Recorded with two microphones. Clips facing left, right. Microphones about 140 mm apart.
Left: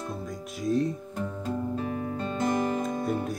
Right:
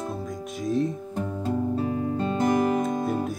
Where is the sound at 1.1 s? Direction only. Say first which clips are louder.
Right 4 dB; 25° right (ahead or behind).